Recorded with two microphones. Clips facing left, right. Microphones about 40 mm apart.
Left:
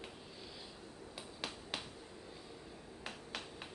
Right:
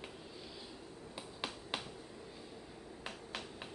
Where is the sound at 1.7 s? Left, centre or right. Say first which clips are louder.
Right 3 dB; centre.